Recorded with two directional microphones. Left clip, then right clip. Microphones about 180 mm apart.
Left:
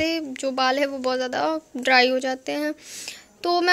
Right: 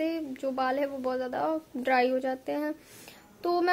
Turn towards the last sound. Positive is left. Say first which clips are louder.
# left 6 dB
turn(degrees=15)  # may be behind; listen again after turning